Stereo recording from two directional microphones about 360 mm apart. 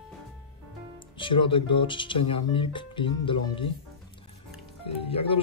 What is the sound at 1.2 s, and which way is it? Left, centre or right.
Speech, centre.